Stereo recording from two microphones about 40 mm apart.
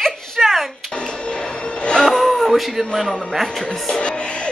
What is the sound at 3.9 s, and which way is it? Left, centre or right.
Music, left.